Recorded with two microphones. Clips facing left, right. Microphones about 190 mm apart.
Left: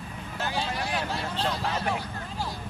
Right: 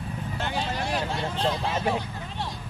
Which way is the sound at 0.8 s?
25° right (ahead or behind).